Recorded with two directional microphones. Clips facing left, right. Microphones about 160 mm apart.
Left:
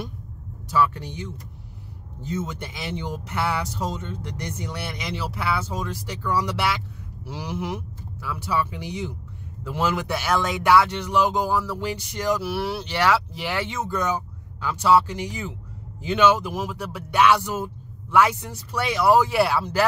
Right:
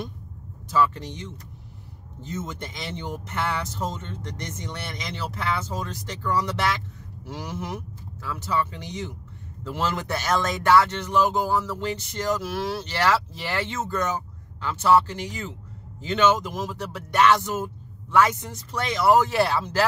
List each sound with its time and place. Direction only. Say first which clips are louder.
0.7 s speech: even; 10° left (ahead or behind)
2.2 s speech: left 3 dB; 10° left (ahead or behind)